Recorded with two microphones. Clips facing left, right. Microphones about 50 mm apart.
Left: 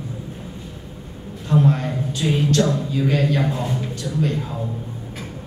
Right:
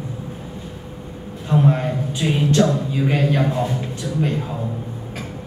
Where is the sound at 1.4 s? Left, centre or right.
Right.